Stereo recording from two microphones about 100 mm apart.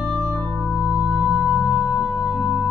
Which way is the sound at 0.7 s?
30° left (ahead or behind).